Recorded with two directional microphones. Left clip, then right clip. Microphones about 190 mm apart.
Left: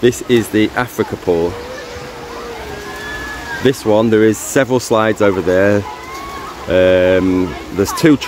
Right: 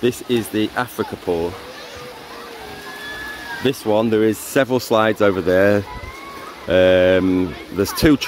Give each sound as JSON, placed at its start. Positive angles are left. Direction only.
{"t": 0.0, "sound": "speech", "side_deg": -5}
{"t": 3.6, "sound": "speech", "side_deg": -10}